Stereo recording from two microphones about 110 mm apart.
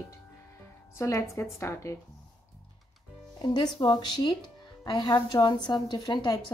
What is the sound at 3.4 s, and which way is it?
A woman's voice, 40° left (ahead or behind).